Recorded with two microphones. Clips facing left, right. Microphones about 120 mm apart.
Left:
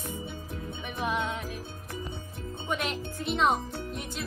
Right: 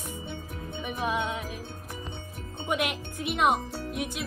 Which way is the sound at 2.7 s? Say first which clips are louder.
Right 3 dB; 15° right (ahead or behind).